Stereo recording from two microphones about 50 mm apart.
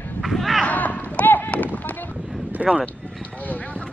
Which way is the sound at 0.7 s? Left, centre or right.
Left.